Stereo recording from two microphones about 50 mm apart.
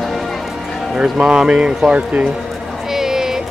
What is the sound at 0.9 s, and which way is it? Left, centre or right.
Speech, centre.